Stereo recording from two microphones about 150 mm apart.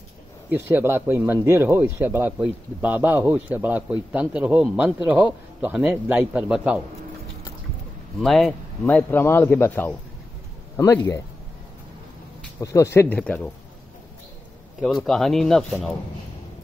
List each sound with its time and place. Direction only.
0.5 s speech: 10° right (ahead or behind)
8.2 s speech: centre (ahead or behind)
8.8 s speech: 15° left (ahead or behind)
12.5 s speech: 20° left (ahead or behind)
14.8 s speech: centre (ahead or behind)